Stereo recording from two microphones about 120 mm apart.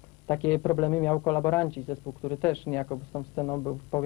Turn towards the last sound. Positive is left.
turn(degrees=25)  # may be behind; listen again after turning